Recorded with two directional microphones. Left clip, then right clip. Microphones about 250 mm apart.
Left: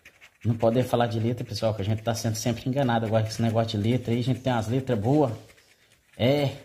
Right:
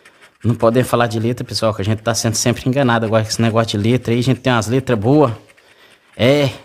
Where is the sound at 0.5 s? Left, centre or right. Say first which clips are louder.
Right 9 dB; right.